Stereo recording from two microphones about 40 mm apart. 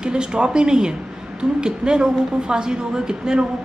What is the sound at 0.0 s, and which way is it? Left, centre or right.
A woman's voice, right.